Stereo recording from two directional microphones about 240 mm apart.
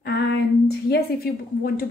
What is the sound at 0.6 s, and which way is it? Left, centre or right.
Speech, left.